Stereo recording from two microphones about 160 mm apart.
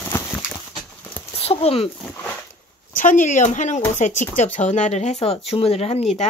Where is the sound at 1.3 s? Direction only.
40° left (ahead or behind).